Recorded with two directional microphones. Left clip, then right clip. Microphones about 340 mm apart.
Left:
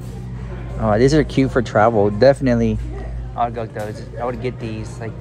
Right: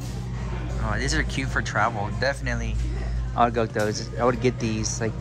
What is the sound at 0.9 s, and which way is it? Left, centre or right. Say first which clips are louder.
Speech: left 12 dB; centre.